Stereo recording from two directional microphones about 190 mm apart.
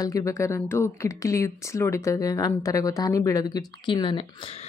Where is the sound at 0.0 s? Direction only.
15° left (ahead or behind).